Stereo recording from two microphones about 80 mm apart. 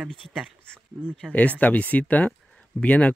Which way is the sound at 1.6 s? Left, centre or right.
Centre.